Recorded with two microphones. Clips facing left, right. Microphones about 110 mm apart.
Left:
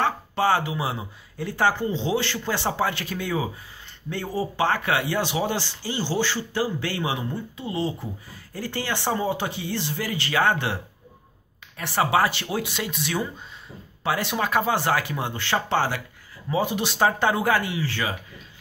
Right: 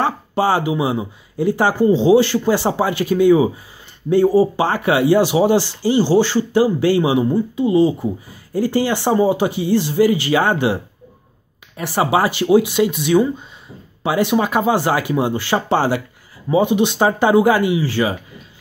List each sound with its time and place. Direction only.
0.0 s speech: 10° right (ahead or behind)
4.2 s speech: 35° right (ahead or behind)
4.7 s speech: 10° right (ahead or behind)
12.0 s speech: 10° right (ahead or behind)
16.5 s speech: centre (ahead or behind)